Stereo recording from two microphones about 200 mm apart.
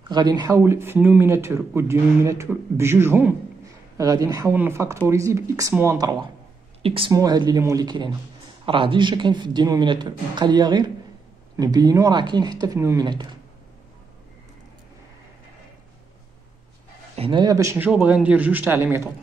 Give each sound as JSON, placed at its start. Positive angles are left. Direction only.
{"t": 0.1, "sound": "speech", "side_deg": -20}
{"t": 6.8, "sound": "speech", "side_deg": -25}
{"t": 17.1, "sound": "speech", "side_deg": -25}